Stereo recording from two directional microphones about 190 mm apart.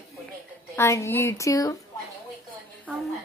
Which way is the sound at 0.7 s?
15° left (ahead or behind).